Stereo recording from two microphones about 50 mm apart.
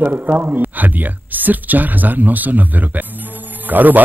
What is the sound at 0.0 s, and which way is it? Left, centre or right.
Speech, right.